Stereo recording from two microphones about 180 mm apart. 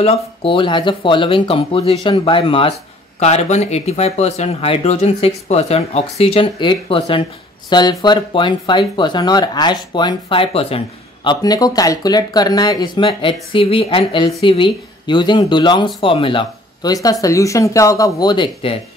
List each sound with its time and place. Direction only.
0.0 s speech: 30° left (ahead or behind)
11.2 s speech: 20° left (ahead or behind)